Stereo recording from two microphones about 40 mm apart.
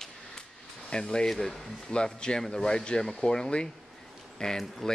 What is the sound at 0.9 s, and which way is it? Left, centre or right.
Speech, left.